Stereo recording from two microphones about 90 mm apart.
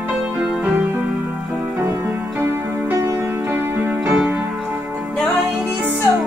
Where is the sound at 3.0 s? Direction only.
25° right (ahead or behind).